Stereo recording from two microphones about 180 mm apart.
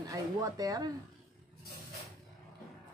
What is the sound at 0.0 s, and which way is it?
Speech, 20° right (ahead or behind).